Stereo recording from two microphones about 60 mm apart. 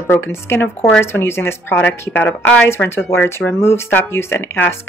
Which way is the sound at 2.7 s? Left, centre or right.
Left.